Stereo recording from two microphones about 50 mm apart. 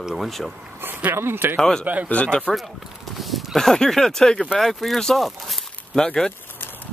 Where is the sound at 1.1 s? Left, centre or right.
Right.